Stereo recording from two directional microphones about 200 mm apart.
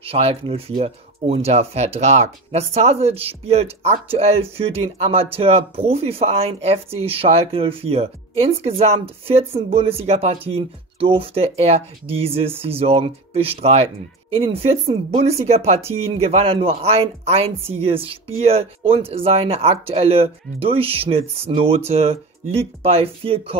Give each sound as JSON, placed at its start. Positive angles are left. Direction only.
{"t": 0.0, "sound": "speech", "side_deg": -30}